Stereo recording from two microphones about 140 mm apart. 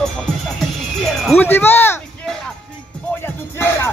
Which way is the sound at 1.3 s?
15° left (ahead or behind).